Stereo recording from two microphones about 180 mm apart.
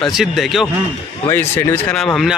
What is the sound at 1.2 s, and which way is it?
Speech, 15° left (ahead or behind).